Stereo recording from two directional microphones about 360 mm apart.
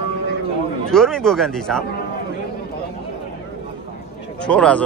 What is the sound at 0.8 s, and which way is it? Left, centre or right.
A man's voice, centre.